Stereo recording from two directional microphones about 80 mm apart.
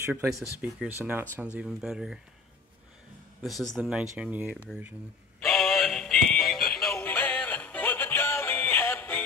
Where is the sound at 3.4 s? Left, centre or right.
Centre.